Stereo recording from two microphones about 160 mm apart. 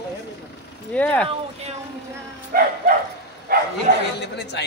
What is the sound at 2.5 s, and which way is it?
Bow-wow, 70° right (ahead or behind).